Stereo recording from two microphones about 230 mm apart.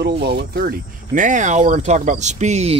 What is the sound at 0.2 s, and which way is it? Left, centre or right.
Speech, right.